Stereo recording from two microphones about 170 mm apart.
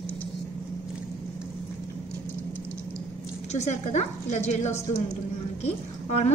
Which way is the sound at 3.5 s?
45° left (ahead or behind).